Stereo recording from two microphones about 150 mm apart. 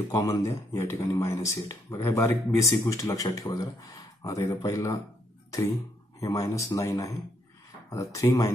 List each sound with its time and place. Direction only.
0.1 s speech: 20° left (ahead or behind)
5.5 s a sound: 20° left (ahead or behind)
6.2 s speech: 20° left (ahead or behind)